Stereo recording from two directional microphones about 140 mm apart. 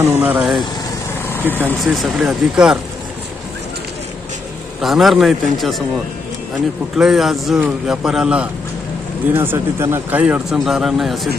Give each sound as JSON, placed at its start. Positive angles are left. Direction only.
{"t": 0.0, "sound": "speech", "side_deg": -15}
{"t": 1.8, "sound": "a man's voice", "side_deg": 0}
{"t": 4.8, "sound": "a man's voice", "side_deg": 0}
{"t": 7.0, "sound": "a man's voice", "side_deg": -5}